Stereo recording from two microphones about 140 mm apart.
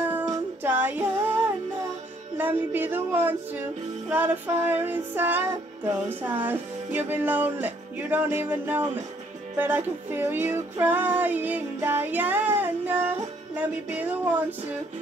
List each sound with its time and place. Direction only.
0.6 s music: 15° right (ahead or behind)
2.3 s music: 15° right (ahead or behind)